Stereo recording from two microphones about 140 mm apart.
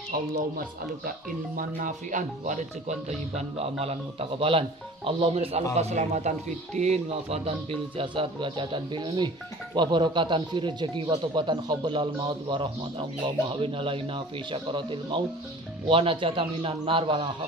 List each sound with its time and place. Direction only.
0.1 s speech: 90° right
1.8 s speech: 65° right (ahead or behind); by 17.3 s 40° right (ahead or behind)